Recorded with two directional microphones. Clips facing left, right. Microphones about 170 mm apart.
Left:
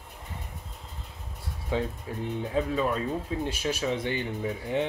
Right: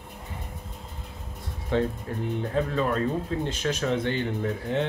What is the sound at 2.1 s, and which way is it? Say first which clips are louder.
Speech: right 2 dB; 10° left (ahead or behind).